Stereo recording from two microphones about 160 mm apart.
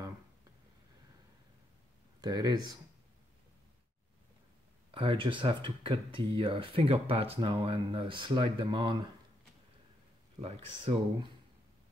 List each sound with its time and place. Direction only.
2.2 s speech: 25° right (ahead or behind)
4.9 s speech: 35° right (ahead or behind)
10.4 s speech: 35° right (ahead or behind)